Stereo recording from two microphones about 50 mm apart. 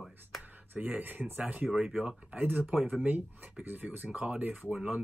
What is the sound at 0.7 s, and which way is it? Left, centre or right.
Speech, right.